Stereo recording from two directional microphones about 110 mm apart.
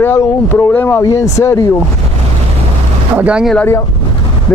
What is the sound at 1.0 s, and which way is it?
Speech, 30° left (ahead or behind).